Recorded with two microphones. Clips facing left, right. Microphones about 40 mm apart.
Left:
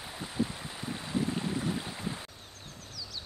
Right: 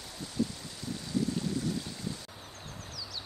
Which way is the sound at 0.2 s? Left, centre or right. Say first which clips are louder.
Even; left.